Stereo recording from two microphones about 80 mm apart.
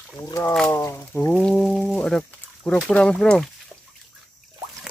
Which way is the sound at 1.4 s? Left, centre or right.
Centre.